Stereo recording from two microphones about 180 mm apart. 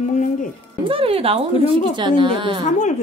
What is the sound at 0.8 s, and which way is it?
Speech, 30° right (ahead or behind).